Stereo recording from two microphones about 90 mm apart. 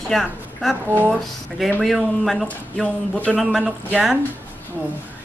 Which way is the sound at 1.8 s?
Centre (ahead or behind).